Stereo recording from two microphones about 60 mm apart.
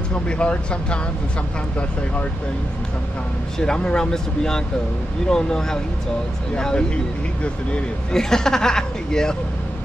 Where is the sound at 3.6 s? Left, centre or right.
Centre.